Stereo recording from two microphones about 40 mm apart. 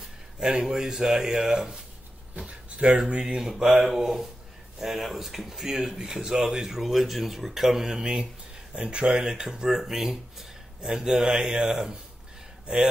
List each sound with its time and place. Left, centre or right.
0.0 s speech: centre
2.3 s a sound: right
3.1 s speech: right
3.3 s speech: centre
8.7 s speech: right; by 10.1 s centre
10.8 s speech: centre
11.7 s speech: centre